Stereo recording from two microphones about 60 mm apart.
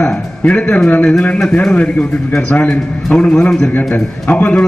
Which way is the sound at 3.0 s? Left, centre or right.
Centre.